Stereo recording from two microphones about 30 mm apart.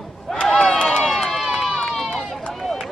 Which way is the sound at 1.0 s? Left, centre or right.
Centre.